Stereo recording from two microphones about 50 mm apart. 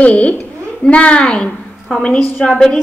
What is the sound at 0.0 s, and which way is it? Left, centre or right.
A woman's voice, left.